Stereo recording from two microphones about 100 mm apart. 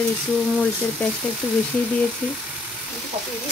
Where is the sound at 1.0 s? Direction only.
20° left (ahead or behind).